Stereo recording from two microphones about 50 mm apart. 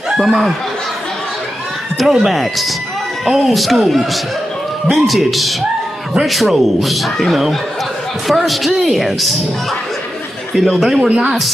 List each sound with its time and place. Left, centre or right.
0.1 s speech: centre
2.0 s speech: centre
10.7 s speech: centre
11.1 s speech: centre